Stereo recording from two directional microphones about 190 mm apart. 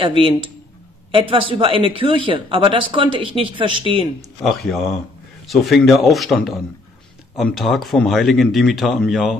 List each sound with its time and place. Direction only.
0.0 s speech: 25° right (ahead or behind)
4.4 s speech: centre (ahead or behind)